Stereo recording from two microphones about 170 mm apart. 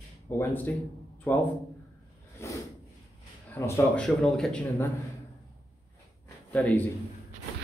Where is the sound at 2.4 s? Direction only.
15° left (ahead or behind).